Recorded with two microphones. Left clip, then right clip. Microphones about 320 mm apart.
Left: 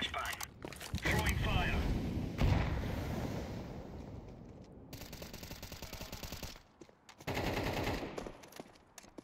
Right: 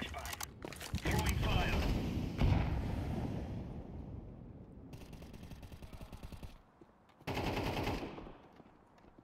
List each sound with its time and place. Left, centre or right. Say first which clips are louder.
0.1 s a sound: left 5 dB; centre
1.0 s boat: left 3 dB; centre
2.0 s thump: even; centre
2.3 s a sound: left 2 dB; centre
4.9 s machine gun: left 8 dB; centre
7.2 s machine gun: left 1 dB; centre